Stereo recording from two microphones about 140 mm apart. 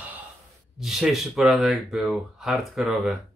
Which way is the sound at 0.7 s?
Centre (ahead or behind).